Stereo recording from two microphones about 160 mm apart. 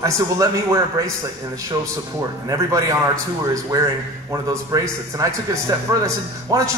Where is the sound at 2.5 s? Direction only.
20° right (ahead or behind).